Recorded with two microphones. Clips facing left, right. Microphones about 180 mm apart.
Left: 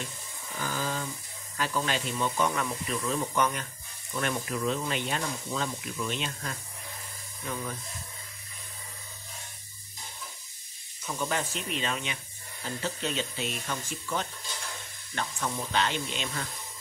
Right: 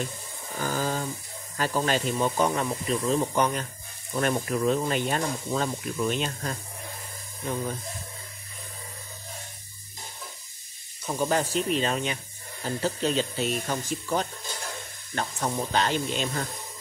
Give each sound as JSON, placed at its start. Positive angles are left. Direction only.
{"t": 0.6, "sound": "a sound", "side_deg": -45}
{"t": 1.6, "sound": "speech", "side_deg": -40}
{"t": 11.1, "sound": "speech", "side_deg": -35}